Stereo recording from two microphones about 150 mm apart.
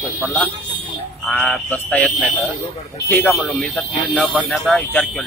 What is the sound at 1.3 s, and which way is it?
Speech, 5° left (ahead or behind).